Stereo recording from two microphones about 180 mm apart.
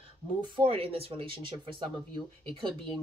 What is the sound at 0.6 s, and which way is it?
Speech, 30° right (ahead or behind).